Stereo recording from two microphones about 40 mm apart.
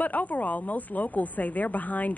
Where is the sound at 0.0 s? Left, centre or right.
Left.